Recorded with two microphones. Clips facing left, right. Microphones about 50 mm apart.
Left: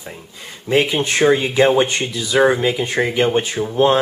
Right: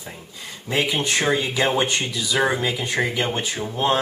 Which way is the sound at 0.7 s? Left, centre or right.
Centre.